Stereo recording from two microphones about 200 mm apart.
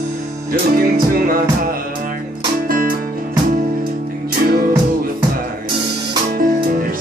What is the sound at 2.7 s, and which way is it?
Music, 45° right (ahead or behind).